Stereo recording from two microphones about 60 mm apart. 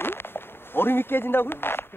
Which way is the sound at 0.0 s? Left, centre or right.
Left.